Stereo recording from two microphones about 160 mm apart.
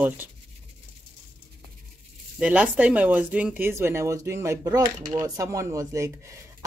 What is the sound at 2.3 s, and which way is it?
Speech, 10° right (ahead or behind).